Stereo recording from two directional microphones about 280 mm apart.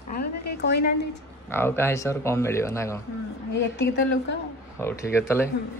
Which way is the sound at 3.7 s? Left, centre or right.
Left.